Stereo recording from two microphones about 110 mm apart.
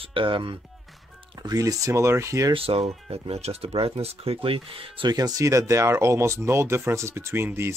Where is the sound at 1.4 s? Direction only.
35° right (ahead or behind).